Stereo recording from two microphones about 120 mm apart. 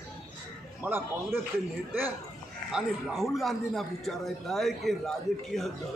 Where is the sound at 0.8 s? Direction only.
20° right (ahead or behind).